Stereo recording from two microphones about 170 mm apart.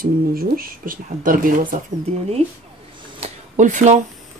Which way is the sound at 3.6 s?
45° right (ahead or behind).